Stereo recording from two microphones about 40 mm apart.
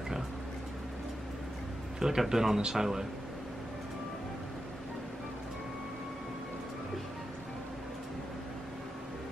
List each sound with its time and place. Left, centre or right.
2.0 s speech: centre